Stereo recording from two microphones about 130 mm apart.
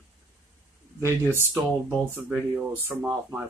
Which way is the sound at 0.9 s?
20° right (ahead or behind).